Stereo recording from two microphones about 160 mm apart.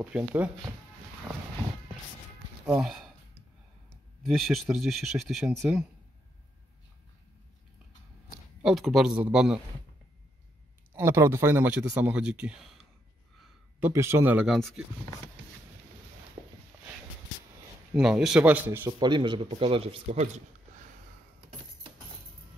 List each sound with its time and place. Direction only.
0.0 s speech: 5° right (ahead or behind)
2.6 s speech: 5° right (ahead or behind)
4.3 s speech: centre (ahead or behind)
8.6 s speech: centre (ahead or behind)
11.0 s speech: 15° right (ahead or behind)
16.4 s a sound: 25° right (ahead or behind)
17.9 s speech: 5° right (ahead or behind)
18.9 s speech: 30° right (ahead or behind); by 20.4 s 45° right (ahead or behind)